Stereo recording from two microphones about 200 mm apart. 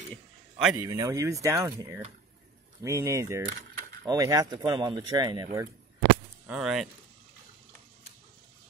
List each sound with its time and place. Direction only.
0.1 s a sound: centre (ahead or behind)
0.7 s speech: 15° right (ahead or behind)
6.4 s speech: 5° right (ahead or behind)